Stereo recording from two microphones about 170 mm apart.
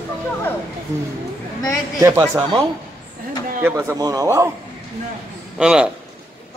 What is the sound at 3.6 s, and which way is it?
Speech, 15° right (ahead or behind).